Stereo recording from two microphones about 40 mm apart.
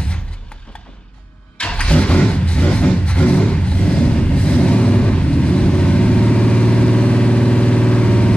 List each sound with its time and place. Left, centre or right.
1.6 s vehicle: left